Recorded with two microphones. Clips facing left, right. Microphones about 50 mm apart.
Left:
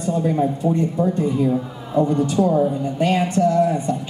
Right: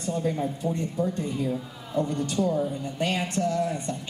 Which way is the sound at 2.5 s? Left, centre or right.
Left.